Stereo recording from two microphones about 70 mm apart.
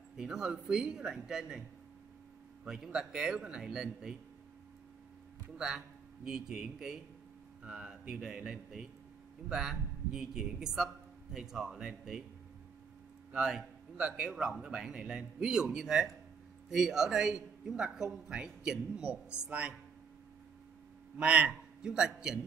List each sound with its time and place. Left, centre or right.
0.2 s a man's voice: centre
2.6 s a man's voice: centre
5.6 s a man's voice: centre
13.3 s a man's voice: centre
21.2 s a man's voice: centre